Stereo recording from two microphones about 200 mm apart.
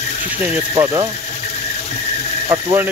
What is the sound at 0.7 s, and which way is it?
Speech, 20° right (ahead or behind).